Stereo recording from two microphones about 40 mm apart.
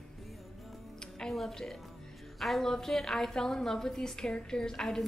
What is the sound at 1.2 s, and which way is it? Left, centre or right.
A woman's voice, centre.